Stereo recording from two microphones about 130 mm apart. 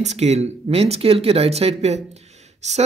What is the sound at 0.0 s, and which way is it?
Speech, 60° right (ahead or behind).